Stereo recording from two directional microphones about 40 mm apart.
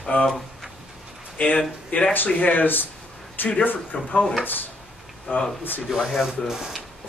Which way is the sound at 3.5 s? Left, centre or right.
Left.